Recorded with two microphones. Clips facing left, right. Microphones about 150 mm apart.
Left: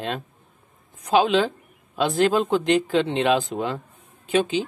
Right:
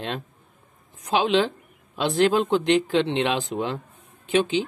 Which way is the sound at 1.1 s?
45° left (ahead or behind).